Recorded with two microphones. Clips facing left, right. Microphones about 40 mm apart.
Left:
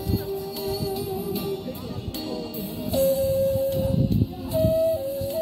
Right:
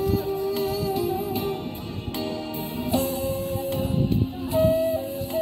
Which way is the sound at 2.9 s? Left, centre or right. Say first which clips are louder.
Left 5 dB; right.